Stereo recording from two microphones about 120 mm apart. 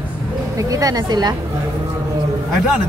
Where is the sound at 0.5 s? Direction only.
30° right (ahead or behind).